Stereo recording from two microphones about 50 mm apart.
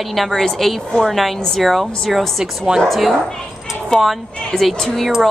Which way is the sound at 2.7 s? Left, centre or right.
Right.